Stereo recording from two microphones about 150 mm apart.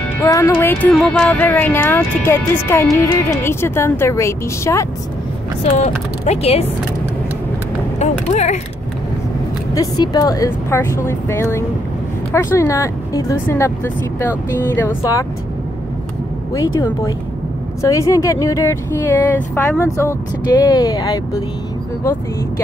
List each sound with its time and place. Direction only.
0.2 s speech: 20° left (ahead or behind)
5.8 s speech: 50° left (ahead or behind)
8.0 s a sound: 50° left (ahead or behind)
9.8 s speech: 25° left (ahead or behind)
16.5 s speech: 25° left (ahead or behind)